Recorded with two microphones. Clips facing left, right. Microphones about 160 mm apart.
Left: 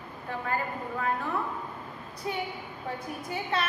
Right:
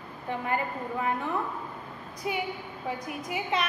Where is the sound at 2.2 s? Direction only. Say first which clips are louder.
Right 2 dB; 15° right (ahead or behind).